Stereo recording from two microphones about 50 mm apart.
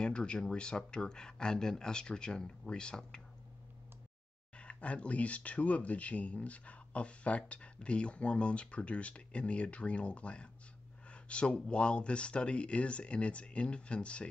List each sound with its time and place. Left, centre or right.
0.0 s speech: centre
4.6 s speech: left
11.1 s a sound: left
11.5 s speech: centre